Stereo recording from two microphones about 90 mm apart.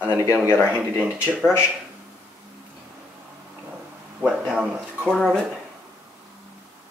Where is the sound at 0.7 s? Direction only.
15° right (ahead or behind).